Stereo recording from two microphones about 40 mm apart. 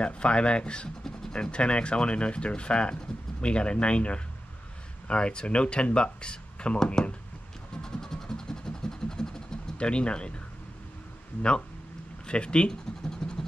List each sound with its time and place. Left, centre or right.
0.0 s speech: left
7.8 s vehicle: centre
9.8 s speech: left
12.3 s speech: left
13.1 s vehicle: centre